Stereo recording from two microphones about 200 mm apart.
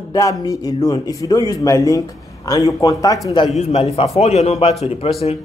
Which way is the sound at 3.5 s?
35° left (ahead or behind).